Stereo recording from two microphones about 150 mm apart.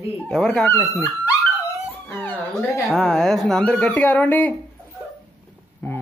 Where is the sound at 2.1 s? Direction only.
15° left (ahead or behind).